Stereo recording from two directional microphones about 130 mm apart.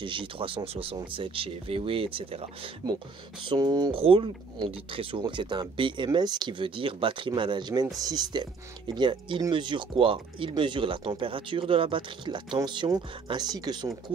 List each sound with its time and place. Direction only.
0.0 s speech: 40° right (ahead or behind)
3.4 s speech: 30° right (ahead or behind)
3.9 s speech: 45° right (ahead or behind)